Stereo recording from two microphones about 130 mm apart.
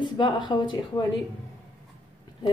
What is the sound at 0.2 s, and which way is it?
Speech, 35° left (ahead or behind).